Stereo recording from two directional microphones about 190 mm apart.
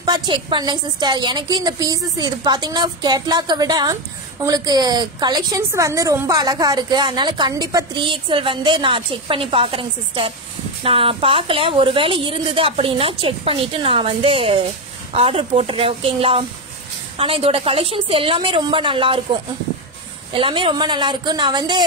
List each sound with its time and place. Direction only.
0.0 s a woman's voice: 25° right (ahead or behind)
20.3 s a woman's voice: 25° right (ahead or behind)